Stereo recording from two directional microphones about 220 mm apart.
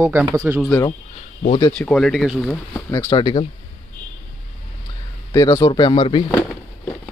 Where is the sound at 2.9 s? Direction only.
15° left (ahead or behind).